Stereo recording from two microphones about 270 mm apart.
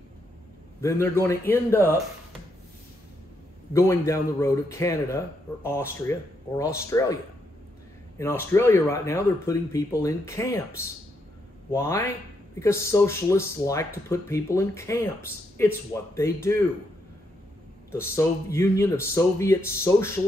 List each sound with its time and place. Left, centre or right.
0.7 s a man's voice: centre
3.7 s a man's voice: centre
8.2 s a man's voice: centre
11.7 s a man's voice: centre
16.2 s a man's voice: centre
17.9 s a man's voice: centre